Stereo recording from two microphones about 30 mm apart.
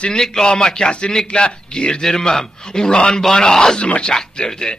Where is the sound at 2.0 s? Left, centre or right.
Centre.